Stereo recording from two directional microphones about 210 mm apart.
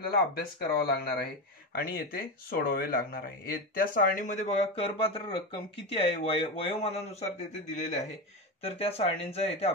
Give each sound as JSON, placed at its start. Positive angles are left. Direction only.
{"t": 0.3, "sound": "speech", "side_deg": 50}